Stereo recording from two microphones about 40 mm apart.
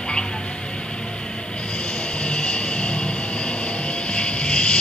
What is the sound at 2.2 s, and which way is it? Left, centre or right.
Music, left.